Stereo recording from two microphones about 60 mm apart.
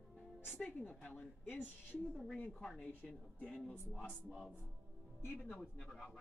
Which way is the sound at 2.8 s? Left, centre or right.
Left.